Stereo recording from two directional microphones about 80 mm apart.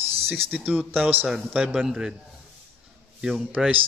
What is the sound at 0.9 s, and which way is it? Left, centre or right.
Speech, centre.